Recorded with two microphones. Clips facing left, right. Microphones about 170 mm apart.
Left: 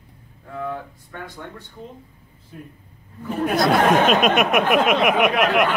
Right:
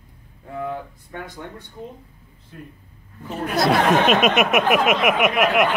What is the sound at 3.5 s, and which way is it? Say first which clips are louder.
Speech: even; centre (ahead or behind).